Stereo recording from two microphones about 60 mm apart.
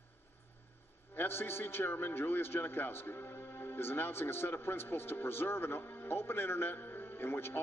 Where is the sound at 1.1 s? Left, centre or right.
Left.